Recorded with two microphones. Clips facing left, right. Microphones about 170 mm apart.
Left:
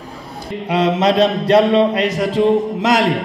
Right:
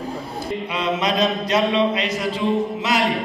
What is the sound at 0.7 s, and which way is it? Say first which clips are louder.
Mantra: left 9 dB; 80° left.